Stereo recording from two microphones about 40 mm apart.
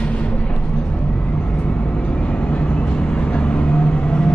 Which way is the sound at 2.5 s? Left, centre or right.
Left.